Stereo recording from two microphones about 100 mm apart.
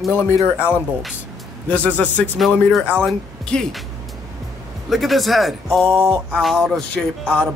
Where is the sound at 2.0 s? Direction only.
10° left (ahead or behind).